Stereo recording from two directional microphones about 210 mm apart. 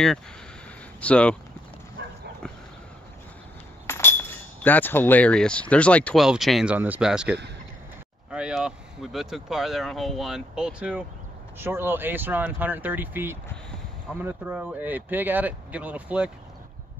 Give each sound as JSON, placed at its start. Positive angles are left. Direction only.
{"t": 1.0, "sound": "speech", "side_deg": 5}
{"t": 3.8, "sound": "speech", "side_deg": 10}